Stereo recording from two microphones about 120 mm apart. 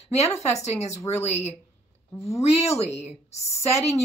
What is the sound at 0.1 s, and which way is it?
Speech, 65° left (ahead or behind).